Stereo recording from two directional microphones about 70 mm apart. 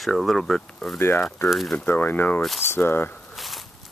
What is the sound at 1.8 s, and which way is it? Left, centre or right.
Speech, left.